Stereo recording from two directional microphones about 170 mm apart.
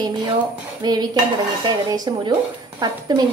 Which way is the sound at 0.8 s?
25° right (ahead or behind).